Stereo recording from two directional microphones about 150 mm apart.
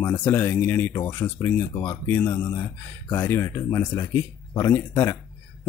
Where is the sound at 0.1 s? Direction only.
10° left (ahead or behind).